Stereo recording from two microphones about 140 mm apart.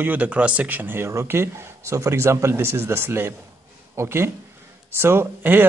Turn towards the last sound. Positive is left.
turn(degrees=-15)  # may be behind; listen again after turning